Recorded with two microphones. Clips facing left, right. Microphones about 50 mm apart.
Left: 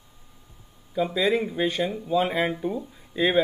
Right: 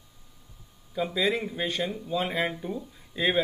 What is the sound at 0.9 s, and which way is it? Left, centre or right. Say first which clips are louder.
Speech: left 4 dB; centre.